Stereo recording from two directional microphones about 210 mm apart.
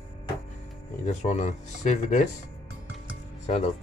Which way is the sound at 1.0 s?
35° left (ahead or behind).